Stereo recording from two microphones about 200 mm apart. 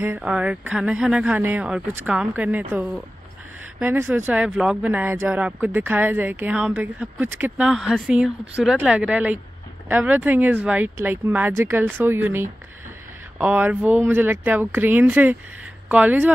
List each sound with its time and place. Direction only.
0.0 s speech: 5° right (ahead or behind)
13.4 s speech: 10° right (ahead or behind)